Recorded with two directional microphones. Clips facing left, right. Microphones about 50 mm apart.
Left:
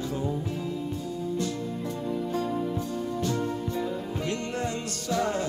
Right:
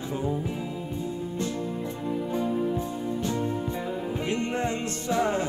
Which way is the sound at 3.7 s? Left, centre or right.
Right.